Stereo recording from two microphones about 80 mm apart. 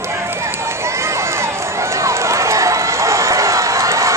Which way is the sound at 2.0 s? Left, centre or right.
Right.